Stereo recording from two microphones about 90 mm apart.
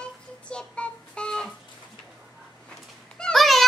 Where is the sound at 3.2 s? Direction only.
5° left (ahead or behind).